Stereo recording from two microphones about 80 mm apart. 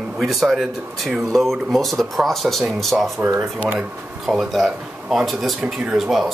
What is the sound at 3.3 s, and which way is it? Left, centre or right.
Speech, centre.